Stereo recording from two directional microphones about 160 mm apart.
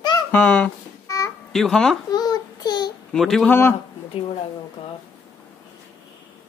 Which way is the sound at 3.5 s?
15° left (ahead or behind).